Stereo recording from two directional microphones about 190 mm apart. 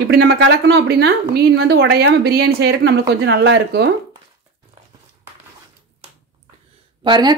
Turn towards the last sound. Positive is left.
turn(degrees=-25)  # may be behind; listen again after turning